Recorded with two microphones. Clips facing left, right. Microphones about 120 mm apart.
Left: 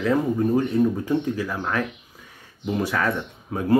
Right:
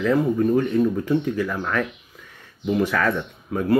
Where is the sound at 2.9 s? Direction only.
20° left (ahead or behind).